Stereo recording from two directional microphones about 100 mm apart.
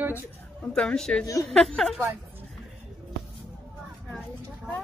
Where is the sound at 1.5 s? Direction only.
5° left (ahead or behind).